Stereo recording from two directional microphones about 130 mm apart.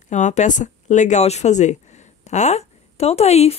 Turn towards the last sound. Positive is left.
turn(degrees=55)  # may be behind; listen again after turning